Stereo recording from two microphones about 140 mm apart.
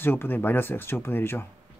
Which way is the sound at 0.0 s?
15° left (ahead or behind).